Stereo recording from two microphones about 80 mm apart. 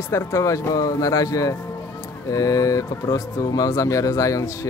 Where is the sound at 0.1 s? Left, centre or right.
Left.